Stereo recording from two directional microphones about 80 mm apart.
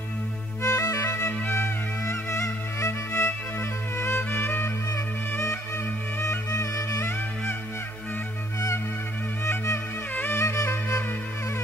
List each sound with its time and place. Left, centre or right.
0.6 s music: left
1.0 s music: left
5.3 s music: left
9.4 s music: left
10.4 s music: left